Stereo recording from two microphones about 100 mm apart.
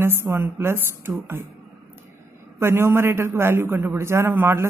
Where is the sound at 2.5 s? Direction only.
25° right (ahead or behind).